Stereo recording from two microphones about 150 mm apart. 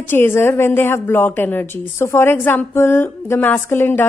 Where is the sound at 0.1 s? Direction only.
15° left (ahead or behind).